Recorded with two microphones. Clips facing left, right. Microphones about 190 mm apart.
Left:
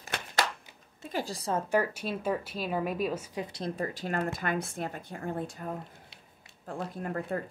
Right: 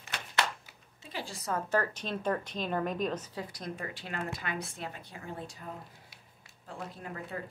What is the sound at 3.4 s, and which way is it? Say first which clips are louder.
A woman's voice: left 6 dB; 30° left (ahead or behind).